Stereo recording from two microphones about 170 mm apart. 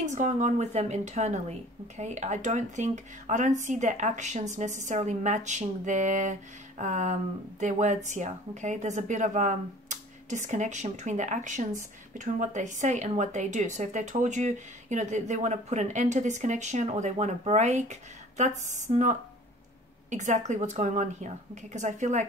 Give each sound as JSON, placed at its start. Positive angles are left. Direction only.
{"t": 0.0, "sound": "a woman's voice", "side_deg": -45}